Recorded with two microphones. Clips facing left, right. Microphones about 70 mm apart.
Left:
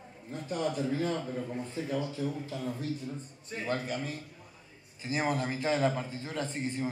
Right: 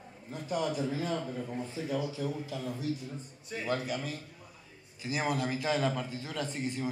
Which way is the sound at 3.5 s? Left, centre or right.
Left.